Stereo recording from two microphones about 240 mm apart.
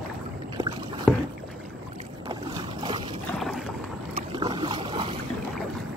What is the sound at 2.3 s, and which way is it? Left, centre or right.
Boat, centre.